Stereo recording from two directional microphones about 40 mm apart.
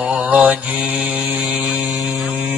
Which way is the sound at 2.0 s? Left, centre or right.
Centre.